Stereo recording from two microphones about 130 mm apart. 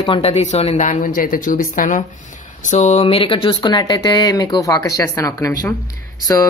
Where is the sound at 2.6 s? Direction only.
60° left (ahead or behind).